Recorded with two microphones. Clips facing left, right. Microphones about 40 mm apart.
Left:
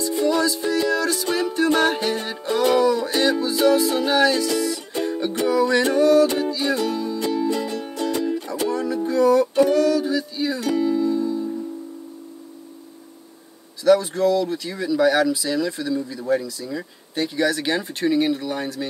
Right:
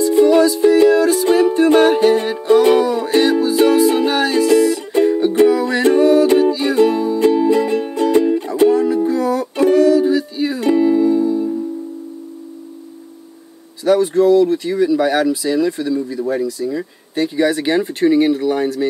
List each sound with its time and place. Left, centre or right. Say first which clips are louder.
0.1 s music: right 9 dB; right
13.8 s a sound: right 2 dB; right
14.3 s speech: right 9 dB; right